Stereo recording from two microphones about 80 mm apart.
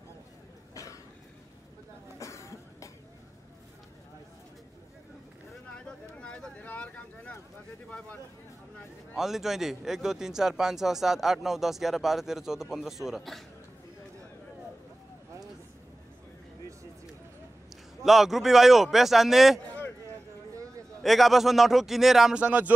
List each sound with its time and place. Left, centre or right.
2.1 s cough: left
5.9 s a sound: centre
9.1 s a man's voice: centre
18.0 s a man's voice: centre
19.6 s a sound: centre
21.0 s a man's voice: centre
22.4 s speech: centre